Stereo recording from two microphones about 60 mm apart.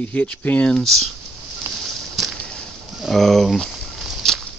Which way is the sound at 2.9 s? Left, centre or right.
Centre.